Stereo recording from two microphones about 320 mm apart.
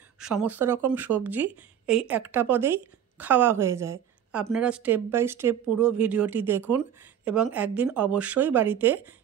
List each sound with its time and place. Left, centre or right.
0.2 s speech: centre